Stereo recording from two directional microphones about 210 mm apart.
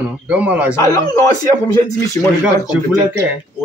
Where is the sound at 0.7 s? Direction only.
15° left (ahead or behind).